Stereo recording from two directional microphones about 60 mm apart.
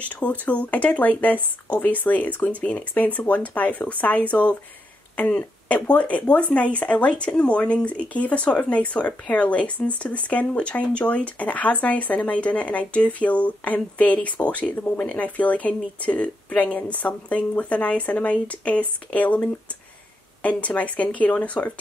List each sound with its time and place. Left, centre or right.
0.1 s speech: left